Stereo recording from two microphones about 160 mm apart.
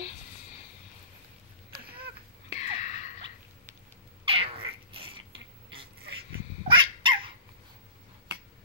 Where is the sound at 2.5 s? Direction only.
45° left (ahead or behind).